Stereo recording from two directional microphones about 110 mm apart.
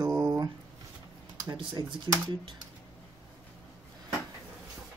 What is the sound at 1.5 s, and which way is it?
Speech, 45° right (ahead or behind).